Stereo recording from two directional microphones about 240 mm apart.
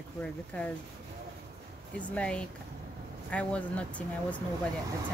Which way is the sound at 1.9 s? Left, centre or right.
Centre.